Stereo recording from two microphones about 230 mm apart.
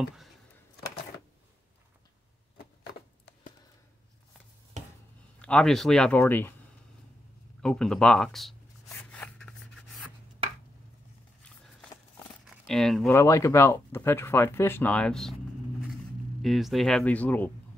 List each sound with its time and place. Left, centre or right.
0.0 s a sound: centre
2.5 s a sound: left
5.4 s speech: centre
7.6 s speech: centre
8.8 s rub: centre
12.6 s speech: centre
16.4 s speech: centre